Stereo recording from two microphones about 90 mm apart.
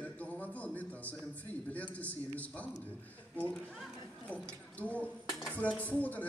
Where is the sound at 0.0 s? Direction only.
15° left (ahead or behind).